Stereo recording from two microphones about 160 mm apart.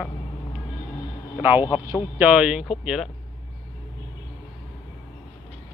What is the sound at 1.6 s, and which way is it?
Speech, 30° left (ahead or behind).